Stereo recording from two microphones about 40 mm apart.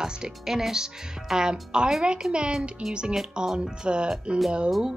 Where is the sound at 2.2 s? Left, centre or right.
Centre.